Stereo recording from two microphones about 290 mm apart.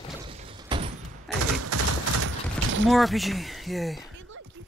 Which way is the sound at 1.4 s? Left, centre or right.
Right.